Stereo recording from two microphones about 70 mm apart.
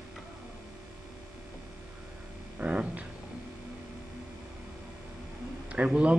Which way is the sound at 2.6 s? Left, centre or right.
Centre.